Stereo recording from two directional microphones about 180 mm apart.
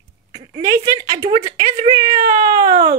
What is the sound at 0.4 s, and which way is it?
Speech, 20° right (ahead or behind).